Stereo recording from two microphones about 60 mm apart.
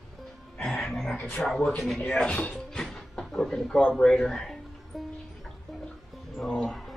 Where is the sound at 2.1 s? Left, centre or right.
Left.